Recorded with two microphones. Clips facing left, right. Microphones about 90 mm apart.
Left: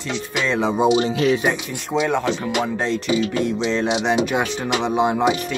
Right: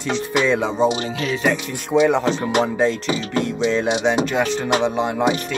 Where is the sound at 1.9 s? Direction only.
10° right (ahead or behind).